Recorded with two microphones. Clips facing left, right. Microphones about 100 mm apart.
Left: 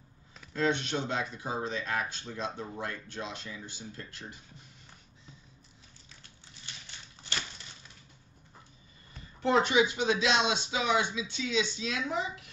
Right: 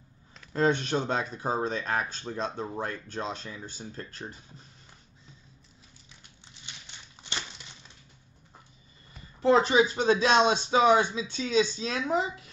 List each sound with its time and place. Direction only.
0.5 s speech: 45° right (ahead or behind)
9.4 s speech: 35° right (ahead or behind)